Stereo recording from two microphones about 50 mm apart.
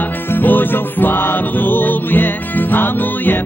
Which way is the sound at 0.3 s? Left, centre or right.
Left.